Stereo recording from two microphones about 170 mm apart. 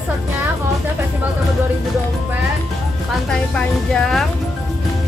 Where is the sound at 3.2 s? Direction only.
5° left (ahead or behind).